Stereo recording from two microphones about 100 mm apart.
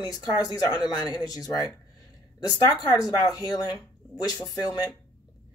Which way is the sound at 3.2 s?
40° left (ahead or behind).